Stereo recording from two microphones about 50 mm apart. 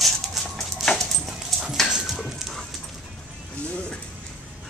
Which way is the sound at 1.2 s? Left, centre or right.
Centre.